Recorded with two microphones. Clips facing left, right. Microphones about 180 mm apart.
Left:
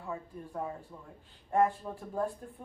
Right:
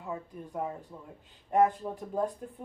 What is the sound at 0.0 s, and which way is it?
Speech, 15° right (ahead or behind).